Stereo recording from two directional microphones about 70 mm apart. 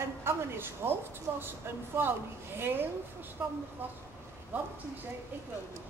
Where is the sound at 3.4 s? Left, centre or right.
Right.